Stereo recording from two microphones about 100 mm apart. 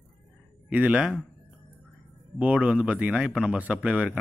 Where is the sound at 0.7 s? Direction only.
15° right (ahead or behind).